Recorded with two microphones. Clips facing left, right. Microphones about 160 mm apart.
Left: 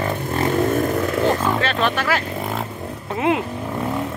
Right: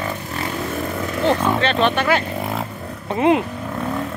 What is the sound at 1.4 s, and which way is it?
Speech, 5° left (ahead or behind).